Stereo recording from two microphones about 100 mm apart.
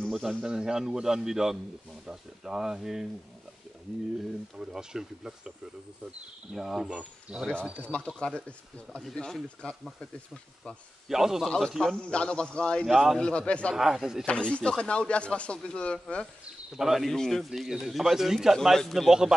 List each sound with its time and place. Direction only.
0.0 s speech: 5° right (ahead or behind)
4.6 s speech: 5° right (ahead or behind)
6.5 s speech: 5° right (ahead or behind)
7.8 s speech: 10° left (ahead or behind)
11.1 s speech: 5° right (ahead or behind)
12.8 s speech: centre (ahead or behind)
13.2 s speech: 10° left (ahead or behind)
13.7 s speech: 5° right (ahead or behind)
14.2 s speech: 10° left (ahead or behind)
16.7 s speech: 5° right (ahead or behind)